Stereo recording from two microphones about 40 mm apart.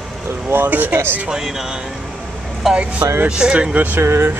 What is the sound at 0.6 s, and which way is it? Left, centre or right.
Speech, right.